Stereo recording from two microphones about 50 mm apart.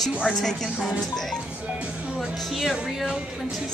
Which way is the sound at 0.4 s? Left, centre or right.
Centre.